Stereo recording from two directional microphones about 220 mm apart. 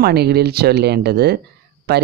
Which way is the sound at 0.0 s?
45° right (ahead or behind).